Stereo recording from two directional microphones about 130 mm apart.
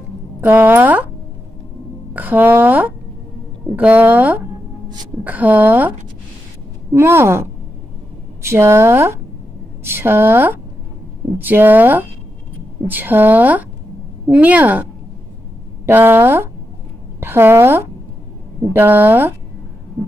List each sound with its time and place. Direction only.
0.4 s a woman's voice: 15° right (ahead or behind)
2.1 s a woman's voice: 15° right (ahead or behind)